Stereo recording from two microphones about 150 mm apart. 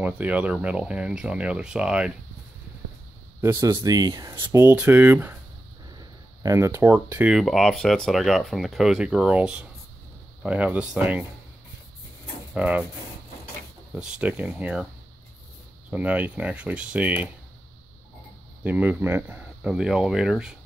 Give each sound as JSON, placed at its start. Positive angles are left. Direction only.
{"t": 0.0, "sound": "speech", "side_deg": -10}
{"t": 3.3, "sound": "speech", "side_deg": -20}
{"t": 12.5, "sound": "speech", "side_deg": -10}
{"t": 13.9, "sound": "speech", "side_deg": -5}
{"t": 15.9, "sound": "speech", "side_deg": -10}
{"t": 18.6, "sound": "speech", "side_deg": -10}